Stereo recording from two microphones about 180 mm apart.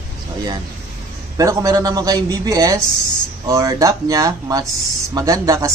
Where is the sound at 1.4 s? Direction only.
20° right (ahead or behind).